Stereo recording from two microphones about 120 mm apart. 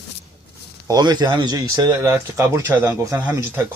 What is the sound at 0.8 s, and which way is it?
Speech, 35° right (ahead or behind).